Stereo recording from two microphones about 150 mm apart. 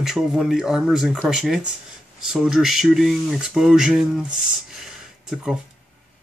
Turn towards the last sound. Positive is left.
turn(degrees=0)  # may be behind; listen again after turning